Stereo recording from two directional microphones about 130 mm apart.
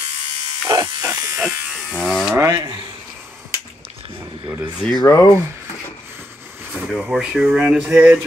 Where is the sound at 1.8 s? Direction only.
Centre (ahead or behind).